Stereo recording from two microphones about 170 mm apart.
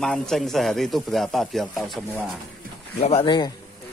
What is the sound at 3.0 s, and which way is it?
Speech, 35° left (ahead or behind).